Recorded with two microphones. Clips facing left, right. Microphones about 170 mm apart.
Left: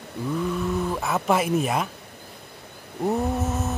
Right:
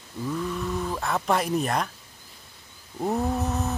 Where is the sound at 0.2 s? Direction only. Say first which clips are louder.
Left 2 dB; 60° left (ahead or behind).